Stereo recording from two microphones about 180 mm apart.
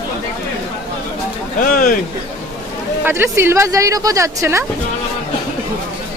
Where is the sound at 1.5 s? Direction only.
50° left (ahead or behind).